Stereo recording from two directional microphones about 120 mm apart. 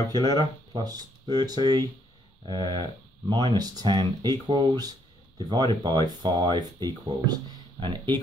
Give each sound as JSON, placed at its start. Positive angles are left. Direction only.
{"t": 0.1, "sound": "speech", "side_deg": -35}